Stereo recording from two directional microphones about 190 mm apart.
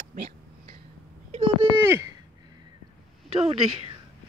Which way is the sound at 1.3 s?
30° right (ahead or behind).